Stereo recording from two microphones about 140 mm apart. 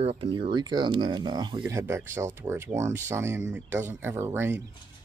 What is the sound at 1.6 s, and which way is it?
Speech, 20° right (ahead or behind).